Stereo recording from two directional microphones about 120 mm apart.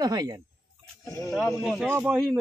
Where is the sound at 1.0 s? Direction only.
30° left (ahead or behind).